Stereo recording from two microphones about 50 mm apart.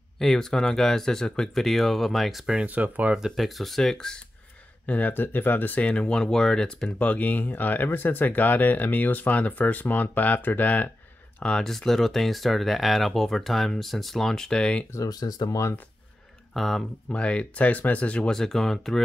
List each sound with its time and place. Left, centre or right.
0.2 s speech: centre
2.6 s speech: right
3.2 s speech: centre
4.8 s speech: left
5.8 s speech: left
7.0 s speech: left
11.6 s speech: centre
16.5 s speech: centre
17.1 s speech: left
18.3 s speech: centre